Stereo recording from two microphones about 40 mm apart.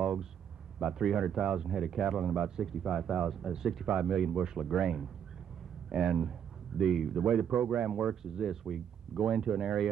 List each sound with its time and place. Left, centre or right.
0.0 s a sound: centre
0.7 s speech: centre
7.5 s speech: centre
7.9 s speech: centre